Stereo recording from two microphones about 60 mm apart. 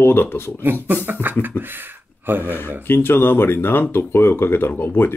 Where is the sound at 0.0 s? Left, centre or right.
Left.